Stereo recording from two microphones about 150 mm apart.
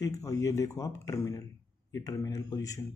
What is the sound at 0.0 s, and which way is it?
Speech, 20° left (ahead or behind).